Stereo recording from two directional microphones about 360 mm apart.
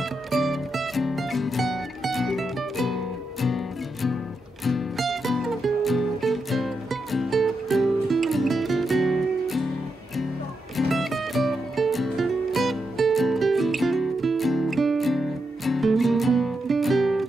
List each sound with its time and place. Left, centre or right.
0.3 s music: centre
10.8 s music: centre